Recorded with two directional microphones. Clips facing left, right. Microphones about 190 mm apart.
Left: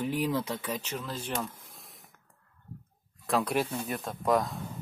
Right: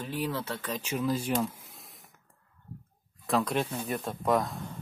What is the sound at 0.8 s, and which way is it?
Speech, 10° right (ahead or behind).